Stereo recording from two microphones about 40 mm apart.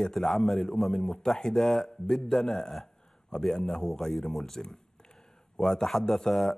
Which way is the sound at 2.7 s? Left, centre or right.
Centre.